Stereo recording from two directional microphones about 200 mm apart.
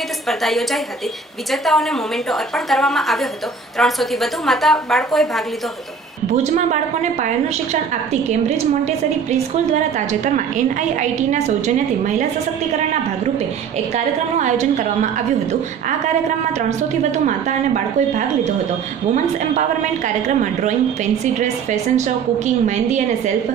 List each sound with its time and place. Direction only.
0.3 s a woman's voice: centre (ahead or behind)
6.2 s a woman's voice: 35° right (ahead or behind)
13.9 s a woman's voice: 35° right (ahead or behind)
17.5 s a woman's voice: 40° right (ahead or behind)
20.2 s a woman's voice: 35° right (ahead or behind)